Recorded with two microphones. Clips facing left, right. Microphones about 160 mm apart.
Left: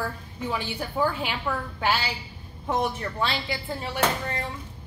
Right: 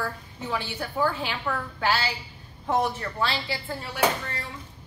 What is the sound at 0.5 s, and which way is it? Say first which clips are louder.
A woman's voice: even; 15° left (ahead or behind).